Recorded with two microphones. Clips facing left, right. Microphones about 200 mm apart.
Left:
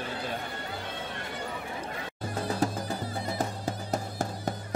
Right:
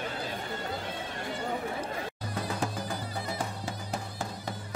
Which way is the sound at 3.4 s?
40° left (ahead or behind).